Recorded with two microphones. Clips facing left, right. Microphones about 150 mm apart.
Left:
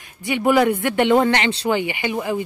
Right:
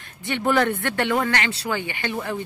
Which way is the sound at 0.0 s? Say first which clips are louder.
Left 5 dB; 15° left (ahead or behind).